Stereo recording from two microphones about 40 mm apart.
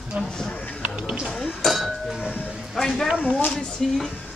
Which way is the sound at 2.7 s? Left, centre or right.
Centre.